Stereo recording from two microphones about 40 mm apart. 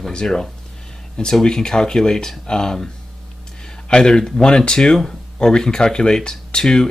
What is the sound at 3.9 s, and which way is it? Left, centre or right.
Speech, left.